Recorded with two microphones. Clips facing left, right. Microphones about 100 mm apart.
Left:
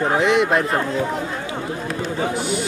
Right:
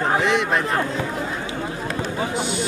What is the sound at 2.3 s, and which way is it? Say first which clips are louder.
Speech: left 2 dB; 25° right (ahead or behind).